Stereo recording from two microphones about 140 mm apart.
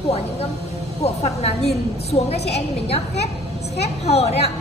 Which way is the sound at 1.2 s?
50° left (ahead or behind).